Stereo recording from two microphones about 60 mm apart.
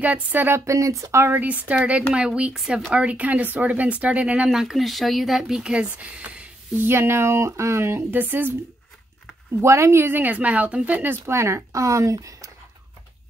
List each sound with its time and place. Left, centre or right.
0.0 s speech: right
0.7 s speech: right
1.2 s speech: right
4.5 s speech: centre
6.2 s a sound: right
6.9 s speech: right
8.1 s speech: right
9.6 s speech: right
10.0 s speech: right
11.2 s speech: right